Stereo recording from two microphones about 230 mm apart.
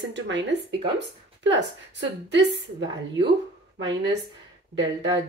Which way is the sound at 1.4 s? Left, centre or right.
Right.